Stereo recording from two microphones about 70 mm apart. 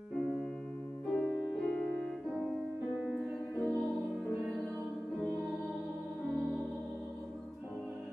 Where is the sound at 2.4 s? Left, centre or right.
Centre.